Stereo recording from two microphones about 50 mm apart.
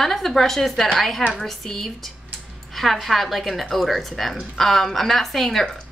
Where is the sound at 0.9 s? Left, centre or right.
Centre.